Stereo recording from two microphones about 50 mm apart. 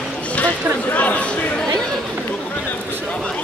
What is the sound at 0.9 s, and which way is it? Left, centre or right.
Chatter, left.